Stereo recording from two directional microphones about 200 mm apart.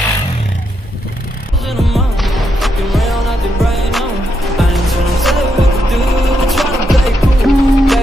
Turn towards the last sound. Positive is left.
turn(degrees=0)  # may be behind; listen again after turning